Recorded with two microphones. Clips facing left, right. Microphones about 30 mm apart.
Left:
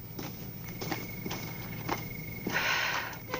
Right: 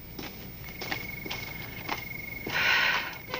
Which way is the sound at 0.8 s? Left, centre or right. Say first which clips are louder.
Right 2 dB; right.